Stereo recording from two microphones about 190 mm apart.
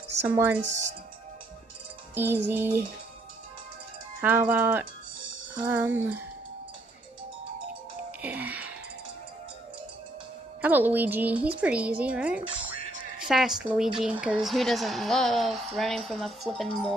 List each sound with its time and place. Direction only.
0.2 s a woman's voice: 10° right (ahead or behind)
2.1 s a woman's voice: 10° right (ahead or behind)
4.2 s a woman's voice: 10° right (ahead or behind)
8.2 s music: 10° right (ahead or behind)
10.6 s a woman's voice: 10° right (ahead or behind)